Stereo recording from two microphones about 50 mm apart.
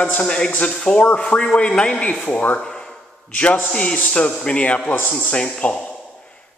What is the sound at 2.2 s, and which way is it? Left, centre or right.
Speech, left.